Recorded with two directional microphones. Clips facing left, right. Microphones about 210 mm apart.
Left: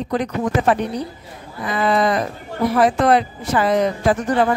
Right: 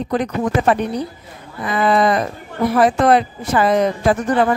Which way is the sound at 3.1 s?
50° right (ahead or behind).